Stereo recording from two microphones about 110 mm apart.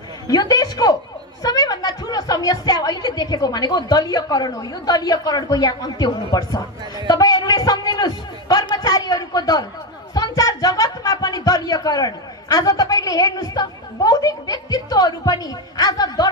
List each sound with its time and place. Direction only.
0.3 s a woman's voice: 35° left (ahead or behind)